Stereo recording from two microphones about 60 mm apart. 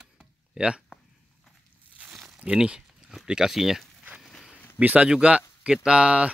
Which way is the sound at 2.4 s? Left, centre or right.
Centre.